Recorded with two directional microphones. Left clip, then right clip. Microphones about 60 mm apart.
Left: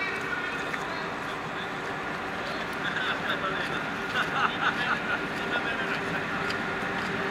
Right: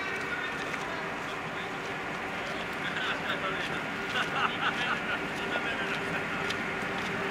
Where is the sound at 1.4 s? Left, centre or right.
Centre.